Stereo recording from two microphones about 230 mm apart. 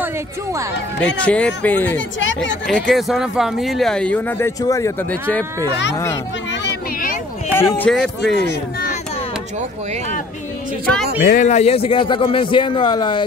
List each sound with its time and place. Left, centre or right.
0.0 s speech: centre
1.0 s speech: centre
2.0 s speech: left
2.6 s speech: centre
6.5 s a sound: left
7.5 s a man's voice: centre
11.2 s a man's voice: left